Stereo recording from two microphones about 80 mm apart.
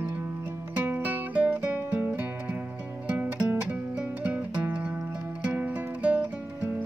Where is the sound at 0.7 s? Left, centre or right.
Right.